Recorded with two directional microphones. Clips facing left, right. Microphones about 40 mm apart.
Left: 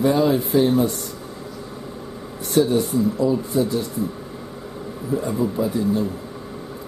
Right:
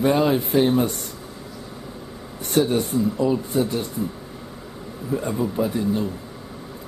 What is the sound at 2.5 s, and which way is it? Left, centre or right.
Speech, right.